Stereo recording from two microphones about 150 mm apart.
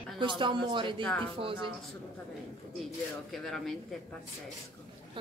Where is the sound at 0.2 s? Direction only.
30° right (ahead or behind).